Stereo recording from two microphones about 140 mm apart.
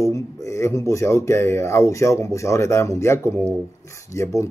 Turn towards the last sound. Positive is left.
turn(degrees=20)  # may be behind; listen again after turning